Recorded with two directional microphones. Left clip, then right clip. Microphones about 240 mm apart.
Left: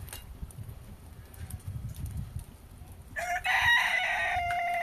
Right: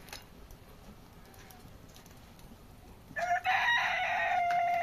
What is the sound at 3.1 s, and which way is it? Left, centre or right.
Chicken, left.